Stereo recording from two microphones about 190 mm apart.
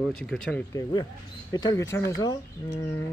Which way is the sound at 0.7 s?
20° left (ahead or behind).